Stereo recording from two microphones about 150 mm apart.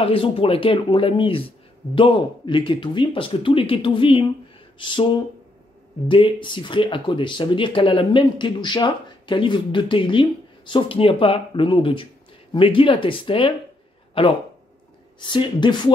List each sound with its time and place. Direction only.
0.0 s speech: 35° left (ahead or behind)